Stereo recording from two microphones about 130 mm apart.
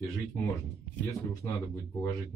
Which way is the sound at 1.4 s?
25° left (ahead or behind).